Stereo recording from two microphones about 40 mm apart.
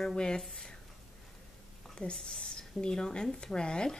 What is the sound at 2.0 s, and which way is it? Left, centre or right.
Speech, left.